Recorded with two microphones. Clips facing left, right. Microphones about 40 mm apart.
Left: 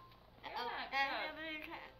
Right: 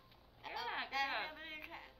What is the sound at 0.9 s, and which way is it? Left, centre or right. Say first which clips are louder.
A woman's voice: left 3 dB; centre.